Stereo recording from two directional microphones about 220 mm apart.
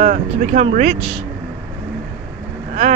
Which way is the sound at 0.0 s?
35° right (ahead or behind).